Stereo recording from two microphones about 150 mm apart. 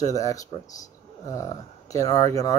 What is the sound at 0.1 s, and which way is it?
Speech, 20° left (ahead or behind).